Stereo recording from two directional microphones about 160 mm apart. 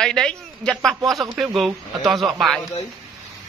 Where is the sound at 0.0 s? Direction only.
5° left (ahead or behind).